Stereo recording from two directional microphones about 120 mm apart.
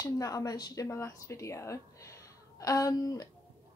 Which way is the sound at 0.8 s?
20° left (ahead or behind).